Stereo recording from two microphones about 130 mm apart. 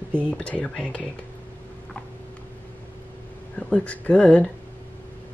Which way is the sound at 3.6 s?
10° left (ahead or behind).